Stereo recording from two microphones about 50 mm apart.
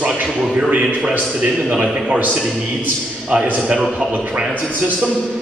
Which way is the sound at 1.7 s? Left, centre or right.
Centre.